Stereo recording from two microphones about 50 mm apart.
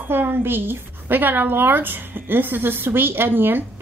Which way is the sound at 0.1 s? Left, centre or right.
Right.